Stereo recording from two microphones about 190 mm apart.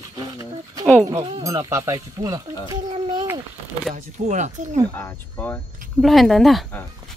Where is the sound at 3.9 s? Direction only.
40° right (ahead or behind).